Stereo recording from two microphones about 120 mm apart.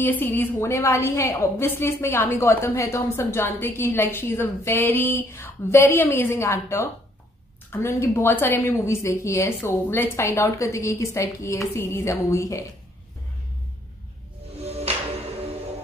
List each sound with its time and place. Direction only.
0.0 s a woman's voice: 15° left (ahead or behind)